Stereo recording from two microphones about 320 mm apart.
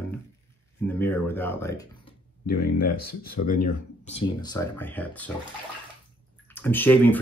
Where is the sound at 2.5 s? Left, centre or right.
Left.